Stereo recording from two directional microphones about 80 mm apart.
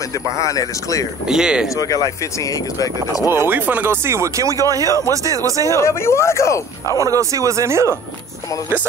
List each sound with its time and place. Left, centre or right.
0.4 s speech: left
1.3 s speech: centre
1.8 s speech: left
3.3 s speech: right
5.8 s speech: left
7.0 s speech: right